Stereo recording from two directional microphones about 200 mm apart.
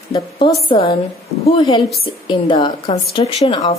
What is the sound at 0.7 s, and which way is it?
A woman's voice, 25° left (ahead or behind).